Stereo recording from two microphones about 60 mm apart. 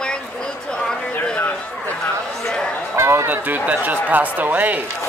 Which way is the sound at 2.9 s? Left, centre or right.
Right.